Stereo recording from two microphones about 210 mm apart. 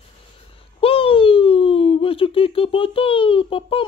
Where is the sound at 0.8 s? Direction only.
25° left (ahead or behind).